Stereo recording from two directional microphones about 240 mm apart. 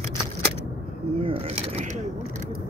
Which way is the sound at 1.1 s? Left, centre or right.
Right.